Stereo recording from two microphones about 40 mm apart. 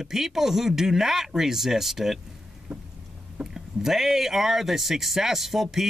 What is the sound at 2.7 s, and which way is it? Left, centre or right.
Vehicle, right.